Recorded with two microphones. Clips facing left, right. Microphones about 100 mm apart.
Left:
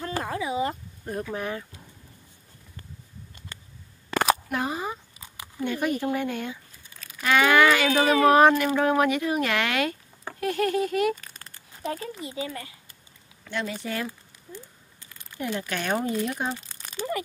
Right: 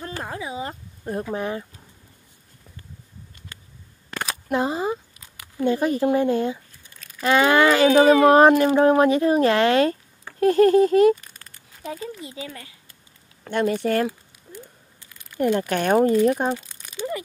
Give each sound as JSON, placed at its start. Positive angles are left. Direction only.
{"t": 0.2, "sound": "a sound", "side_deg": -30}
{"t": 4.5, "sound": "a sound", "side_deg": -25}
{"t": 5.7, "sound": "speech", "side_deg": -30}
{"t": 11.3, "sound": "crumpling", "side_deg": 0}
{"t": 12.2, "sound": "speech", "side_deg": 25}
{"t": 13.4, "sound": "speech", "side_deg": -50}
{"t": 15.3, "sound": "speech", "side_deg": -55}